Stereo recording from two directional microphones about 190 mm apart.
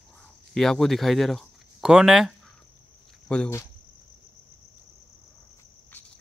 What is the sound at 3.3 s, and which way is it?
Cricket, 10° left (ahead or behind).